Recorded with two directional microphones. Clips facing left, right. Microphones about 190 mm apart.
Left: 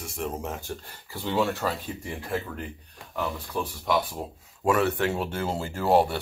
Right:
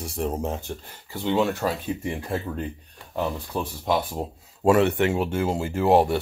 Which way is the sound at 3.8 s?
25° right (ahead or behind).